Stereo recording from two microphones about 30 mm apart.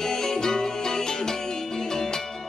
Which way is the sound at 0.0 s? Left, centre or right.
Centre.